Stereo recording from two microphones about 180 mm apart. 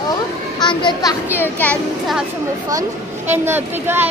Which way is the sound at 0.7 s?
25° left (ahead or behind).